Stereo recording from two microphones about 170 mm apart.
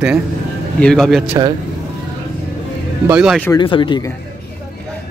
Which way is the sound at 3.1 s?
5° right (ahead or behind).